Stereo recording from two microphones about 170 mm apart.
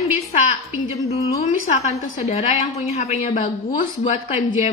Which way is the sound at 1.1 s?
40° left (ahead or behind).